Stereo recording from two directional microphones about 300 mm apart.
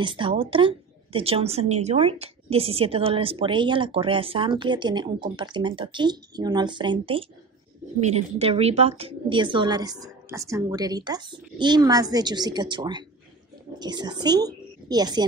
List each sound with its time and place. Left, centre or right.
0.0 s a woman's voice: centre